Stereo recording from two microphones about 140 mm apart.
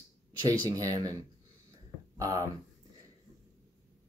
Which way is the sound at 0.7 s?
25° right (ahead or behind).